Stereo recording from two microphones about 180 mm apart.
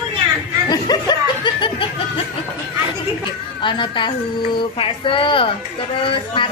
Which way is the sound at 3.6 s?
25° left (ahead or behind).